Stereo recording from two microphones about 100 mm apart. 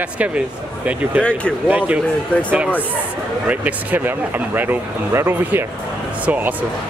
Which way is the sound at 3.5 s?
15° right (ahead or behind).